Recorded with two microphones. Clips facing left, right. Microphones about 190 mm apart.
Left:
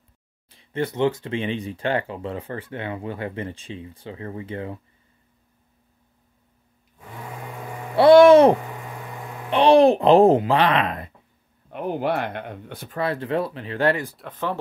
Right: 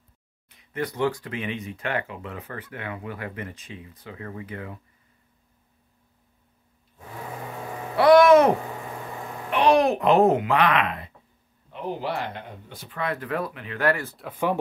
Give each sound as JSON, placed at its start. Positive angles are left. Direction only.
{"t": 0.5, "sound": "speech", "side_deg": 30}
{"t": 7.9, "sound": "a sound", "side_deg": 30}
{"t": 9.5, "sound": "speech", "side_deg": 30}
{"t": 11.7, "sound": "speech", "side_deg": 55}
{"t": 12.9, "sound": "speech", "side_deg": 30}
{"t": 14.1, "sound": "speech", "side_deg": -5}